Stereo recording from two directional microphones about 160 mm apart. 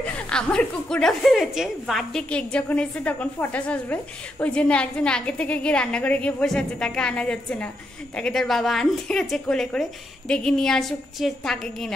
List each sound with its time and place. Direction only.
0.3 s a woman's voice: 5° left (ahead or behind)